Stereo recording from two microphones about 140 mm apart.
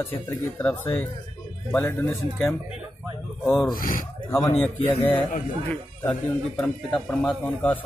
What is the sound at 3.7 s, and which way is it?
Speech, 80° left.